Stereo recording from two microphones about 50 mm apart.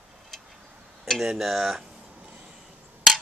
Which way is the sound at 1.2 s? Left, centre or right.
Centre.